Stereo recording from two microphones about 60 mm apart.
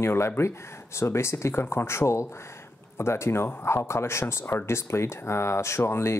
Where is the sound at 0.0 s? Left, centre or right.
Left.